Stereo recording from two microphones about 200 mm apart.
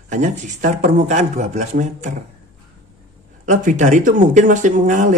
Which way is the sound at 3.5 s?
40° right (ahead or behind).